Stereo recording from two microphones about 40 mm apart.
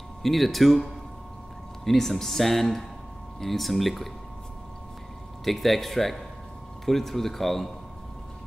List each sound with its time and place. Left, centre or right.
0.2 s speech: centre
1.9 s speech: centre
5.4 s speech: centre